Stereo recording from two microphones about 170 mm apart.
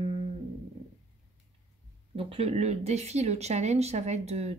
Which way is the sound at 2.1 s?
35° right (ahead or behind).